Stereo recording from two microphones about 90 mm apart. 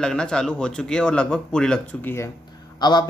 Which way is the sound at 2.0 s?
30° left (ahead or behind).